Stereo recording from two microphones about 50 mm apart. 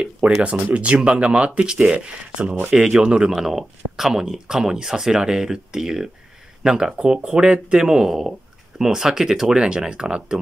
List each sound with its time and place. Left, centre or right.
0.2 s speech: right